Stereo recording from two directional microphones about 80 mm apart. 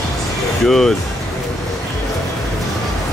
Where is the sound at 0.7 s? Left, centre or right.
Centre.